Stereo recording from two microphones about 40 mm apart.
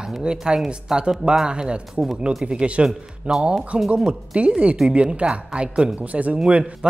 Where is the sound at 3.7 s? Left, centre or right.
Right.